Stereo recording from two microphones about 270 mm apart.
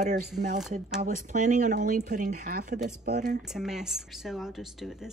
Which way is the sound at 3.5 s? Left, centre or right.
Centre.